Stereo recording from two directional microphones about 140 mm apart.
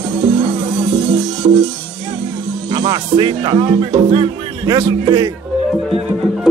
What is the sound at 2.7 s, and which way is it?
A man's voice, 35° right (ahead or behind).